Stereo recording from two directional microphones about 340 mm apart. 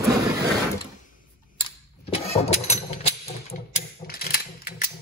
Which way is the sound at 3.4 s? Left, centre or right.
Left.